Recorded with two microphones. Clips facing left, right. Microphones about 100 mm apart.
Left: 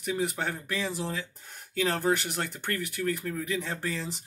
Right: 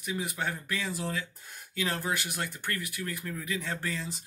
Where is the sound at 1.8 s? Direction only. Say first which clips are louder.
Left 5 dB; 40° left (ahead or behind).